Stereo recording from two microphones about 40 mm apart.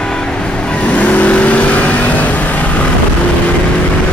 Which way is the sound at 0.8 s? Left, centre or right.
Left.